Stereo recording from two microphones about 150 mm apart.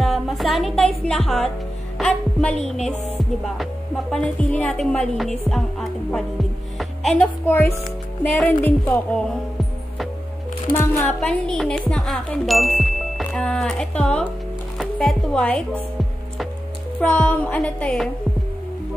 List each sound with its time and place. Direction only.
0.0 s music: centre (ahead or behind)
2.0 s a woman's voice: 5° left (ahead or behind)
7.4 s a woman's voice: 15° left (ahead or behind)
10.7 s a woman's voice: 15° left (ahead or behind)
11.1 s speech: 5° left (ahead or behind)
17.0 s a woman's voice: 10° left (ahead or behind)